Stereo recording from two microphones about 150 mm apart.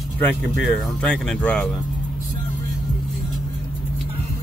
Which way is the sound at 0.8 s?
Centre (ahead or behind).